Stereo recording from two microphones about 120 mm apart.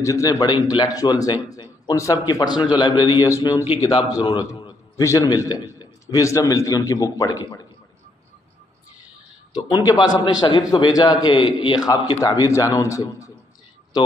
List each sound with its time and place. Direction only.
0.0 s a man's voice: 25° left (ahead or behind)
3.3 s a man's voice: 25° left (ahead or behind)
4.1 s a sound: 35° left (ahead or behind)
5.0 s a man's voice: 30° left (ahead or behind)
9.5 s a man's voice: 35° left (ahead or behind)